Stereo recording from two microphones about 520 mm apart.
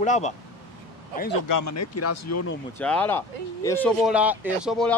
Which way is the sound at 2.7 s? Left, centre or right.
Centre.